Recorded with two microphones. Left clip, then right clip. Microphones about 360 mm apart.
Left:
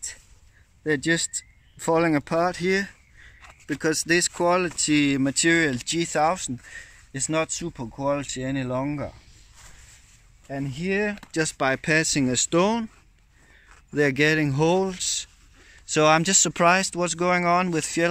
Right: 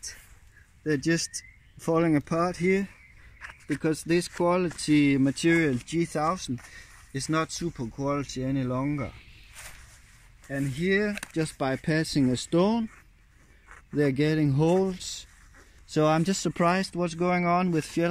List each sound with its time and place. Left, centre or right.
1.0 s speech: left
11.3 s speech: left
13.9 s speech: left